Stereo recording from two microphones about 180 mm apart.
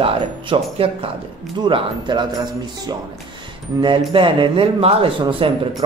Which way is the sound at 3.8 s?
30° right (ahead or behind).